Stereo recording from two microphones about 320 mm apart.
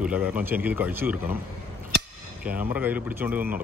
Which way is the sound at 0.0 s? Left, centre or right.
Centre.